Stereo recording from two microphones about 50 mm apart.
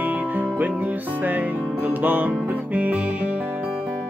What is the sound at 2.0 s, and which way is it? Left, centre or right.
Music, right.